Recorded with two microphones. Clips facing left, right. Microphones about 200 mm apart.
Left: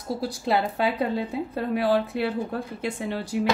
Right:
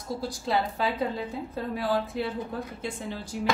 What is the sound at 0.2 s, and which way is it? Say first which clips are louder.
A woman's voice: left 3 dB; 65° left (ahead or behind).